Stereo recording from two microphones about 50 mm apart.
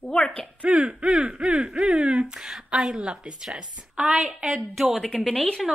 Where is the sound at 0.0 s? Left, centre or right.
Centre.